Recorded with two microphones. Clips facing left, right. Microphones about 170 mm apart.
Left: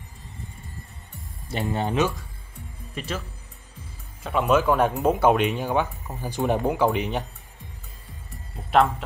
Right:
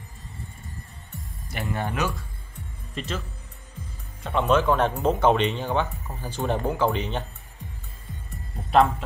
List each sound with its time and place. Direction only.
1.5 s speech: 20° left (ahead or behind)
2.9 s music: 10° left (ahead or behind)
4.2 s speech: 5° left (ahead or behind)